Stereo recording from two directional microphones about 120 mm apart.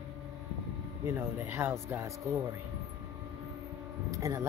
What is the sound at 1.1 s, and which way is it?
Speech, 15° right (ahead or behind).